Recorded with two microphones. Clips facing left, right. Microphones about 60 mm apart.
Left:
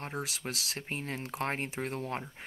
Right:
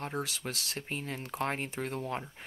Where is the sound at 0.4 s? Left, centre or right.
Centre.